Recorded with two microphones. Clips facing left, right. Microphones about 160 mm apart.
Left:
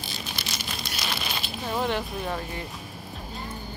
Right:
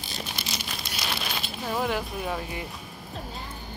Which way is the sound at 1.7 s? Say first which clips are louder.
Left 1 dB; 5° right (ahead or behind).